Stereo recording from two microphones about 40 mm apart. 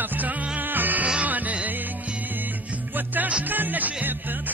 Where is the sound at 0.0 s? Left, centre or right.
Right.